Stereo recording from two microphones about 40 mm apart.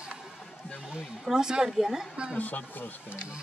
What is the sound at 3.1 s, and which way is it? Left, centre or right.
Speech, right.